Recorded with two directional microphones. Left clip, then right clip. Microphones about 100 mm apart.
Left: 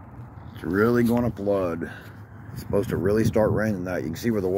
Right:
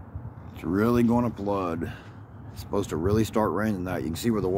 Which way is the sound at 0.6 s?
Centre (ahead or behind).